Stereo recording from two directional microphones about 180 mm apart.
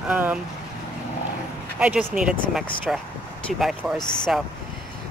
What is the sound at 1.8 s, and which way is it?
Speech, 5° right (ahead or behind).